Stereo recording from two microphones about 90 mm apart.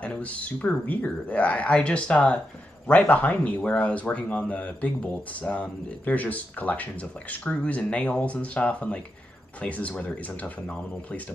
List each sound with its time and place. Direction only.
0.0 s speech: 15° left (ahead or behind)